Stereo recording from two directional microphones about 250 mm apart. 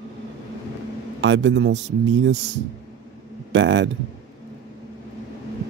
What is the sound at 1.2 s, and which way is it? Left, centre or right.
Speech, right.